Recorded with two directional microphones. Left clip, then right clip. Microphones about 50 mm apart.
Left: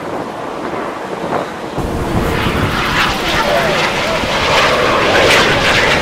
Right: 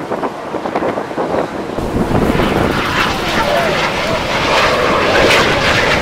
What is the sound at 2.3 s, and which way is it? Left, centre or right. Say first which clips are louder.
Vehicle: right 2 dB; left.